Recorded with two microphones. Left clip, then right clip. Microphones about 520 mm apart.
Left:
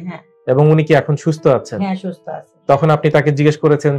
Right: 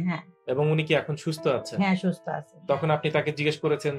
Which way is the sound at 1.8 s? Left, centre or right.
Right.